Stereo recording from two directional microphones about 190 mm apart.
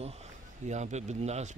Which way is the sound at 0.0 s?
35° right (ahead or behind).